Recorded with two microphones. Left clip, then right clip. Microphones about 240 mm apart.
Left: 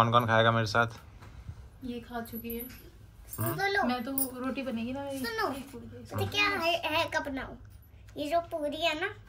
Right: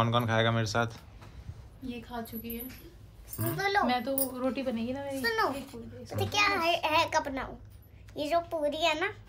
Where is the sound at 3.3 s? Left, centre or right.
Centre.